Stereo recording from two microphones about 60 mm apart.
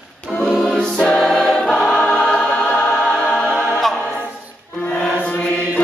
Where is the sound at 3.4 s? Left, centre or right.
Centre.